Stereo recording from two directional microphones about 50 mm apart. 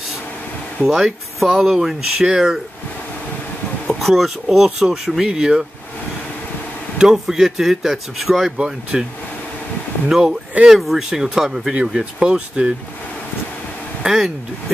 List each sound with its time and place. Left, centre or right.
0.8 s speech: centre
3.8 s speech: centre
7.0 s speech: centre
10.0 s speech: centre
14.0 s speech: centre